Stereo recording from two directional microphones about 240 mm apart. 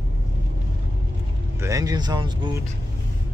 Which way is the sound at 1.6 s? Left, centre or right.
Centre.